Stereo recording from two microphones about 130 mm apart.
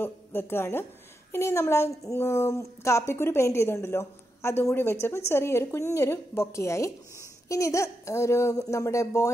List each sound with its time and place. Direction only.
0.0 s a woman's voice: 15° left (ahead or behind)